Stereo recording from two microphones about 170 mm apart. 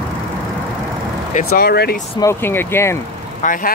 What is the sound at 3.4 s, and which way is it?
Speech, 55° left (ahead or behind).